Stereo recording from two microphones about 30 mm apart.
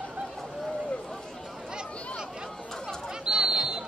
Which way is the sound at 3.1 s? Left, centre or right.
Right.